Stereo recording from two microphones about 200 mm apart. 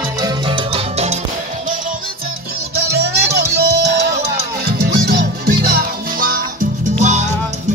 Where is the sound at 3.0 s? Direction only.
55° right (ahead or behind).